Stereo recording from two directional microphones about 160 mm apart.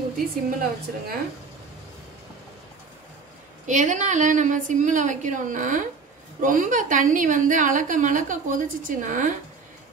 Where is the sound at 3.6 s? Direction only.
50° right (ahead or behind).